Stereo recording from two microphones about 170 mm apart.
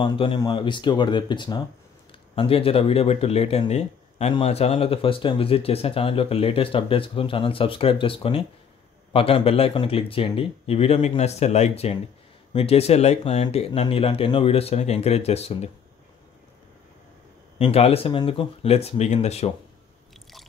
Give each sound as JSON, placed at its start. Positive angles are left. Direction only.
{"t": 0.0, "sound": "speech", "side_deg": 30}
{"t": 17.6, "sound": "speech", "side_deg": 35}